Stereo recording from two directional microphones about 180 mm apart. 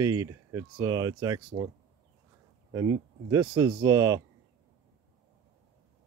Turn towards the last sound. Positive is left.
turn(degrees=-20)  # may be behind; listen again after turning